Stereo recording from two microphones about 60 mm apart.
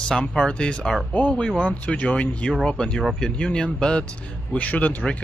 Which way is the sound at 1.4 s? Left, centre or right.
Centre.